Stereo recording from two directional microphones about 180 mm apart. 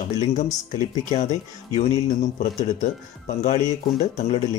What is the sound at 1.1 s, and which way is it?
Speech, 40° left (ahead or behind).